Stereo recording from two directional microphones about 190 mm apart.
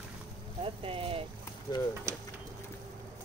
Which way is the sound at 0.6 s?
30° right (ahead or behind).